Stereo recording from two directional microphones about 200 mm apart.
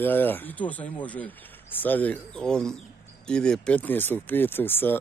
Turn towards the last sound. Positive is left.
turn(degrees=10)  # may be behind; listen again after turning